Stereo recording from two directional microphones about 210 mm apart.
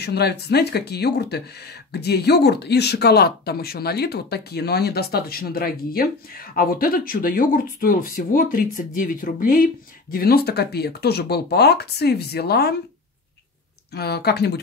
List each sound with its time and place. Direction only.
0.0 s speech: 50° left (ahead or behind)
13.9 s speech: 50° left (ahead or behind)